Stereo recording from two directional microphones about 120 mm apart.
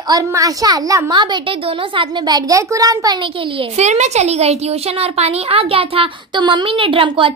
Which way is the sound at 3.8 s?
70° right (ahead or behind).